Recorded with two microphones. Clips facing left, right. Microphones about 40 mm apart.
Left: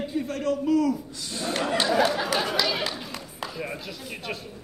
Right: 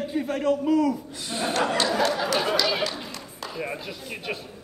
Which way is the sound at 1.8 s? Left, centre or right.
Centre.